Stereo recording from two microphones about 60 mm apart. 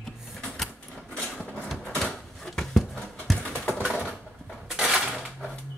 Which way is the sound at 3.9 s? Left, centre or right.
Centre.